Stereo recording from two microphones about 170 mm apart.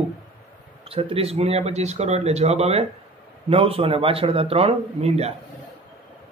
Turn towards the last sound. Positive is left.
turn(degrees=-40)  # may be behind; listen again after turning